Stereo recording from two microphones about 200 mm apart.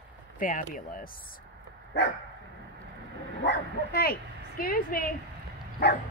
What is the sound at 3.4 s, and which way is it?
Speech, 55° left (ahead or behind).